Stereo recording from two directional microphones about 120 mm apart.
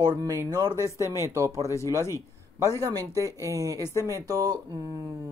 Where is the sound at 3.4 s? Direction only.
25° right (ahead or behind).